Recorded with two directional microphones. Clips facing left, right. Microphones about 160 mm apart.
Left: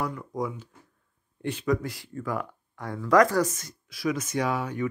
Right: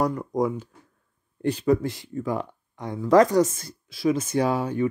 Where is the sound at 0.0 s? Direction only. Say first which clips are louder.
Right 7 dB; 40° right (ahead or behind).